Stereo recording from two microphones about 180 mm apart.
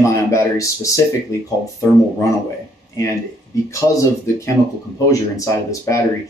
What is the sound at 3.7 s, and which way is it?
Speech, 15° left (ahead or behind).